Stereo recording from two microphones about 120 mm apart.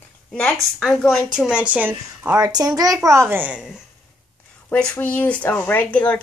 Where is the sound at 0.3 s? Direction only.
5° left (ahead or behind).